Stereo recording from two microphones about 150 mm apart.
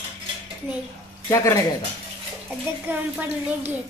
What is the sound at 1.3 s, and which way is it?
Speech, 20° left (ahead or behind).